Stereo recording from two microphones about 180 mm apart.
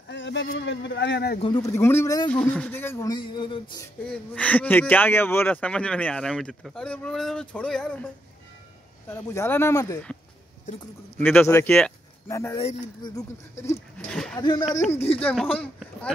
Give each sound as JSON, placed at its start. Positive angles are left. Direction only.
{"t": 0.1, "sound": "a sound", "side_deg": 90}
{"t": 0.6, "sound": "speech", "side_deg": 80}
{"t": 1.4, "sound": "speech", "side_deg": 20}
{"t": 4.0, "sound": "speech", "side_deg": 5}
{"t": 9.1, "sound": "speech", "side_deg": 15}
{"t": 11.1, "sound": "speech", "side_deg": 10}
{"t": 14.1, "sound": "speech", "side_deg": 5}
{"t": 14.4, "sound": "speech", "side_deg": 25}
{"t": 15.1, "sound": "speech", "side_deg": 5}